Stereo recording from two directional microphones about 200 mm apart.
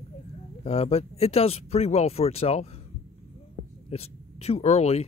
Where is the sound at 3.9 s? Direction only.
30° left (ahead or behind).